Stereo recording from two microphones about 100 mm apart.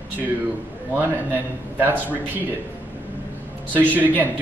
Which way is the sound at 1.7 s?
20° right (ahead or behind).